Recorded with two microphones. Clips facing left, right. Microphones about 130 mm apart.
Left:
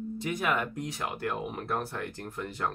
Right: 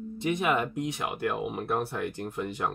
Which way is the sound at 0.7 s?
20° right (ahead or behind).